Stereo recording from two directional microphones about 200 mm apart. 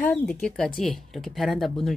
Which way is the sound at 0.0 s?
5° left (ahead or behind).